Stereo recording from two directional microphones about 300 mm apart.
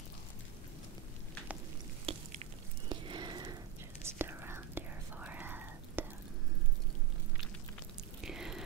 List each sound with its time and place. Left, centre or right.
2.1 s a sound: centre
4.0 s whispering: centre
8.2 s biting: centre